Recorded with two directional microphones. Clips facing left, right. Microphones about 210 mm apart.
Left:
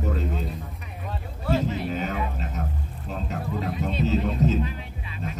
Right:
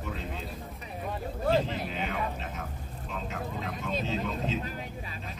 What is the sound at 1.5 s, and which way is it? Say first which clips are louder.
A man's voice: left 3 dB; 45° left (ahead or behind).